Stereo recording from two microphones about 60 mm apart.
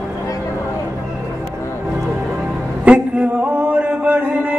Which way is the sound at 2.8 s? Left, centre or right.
Right.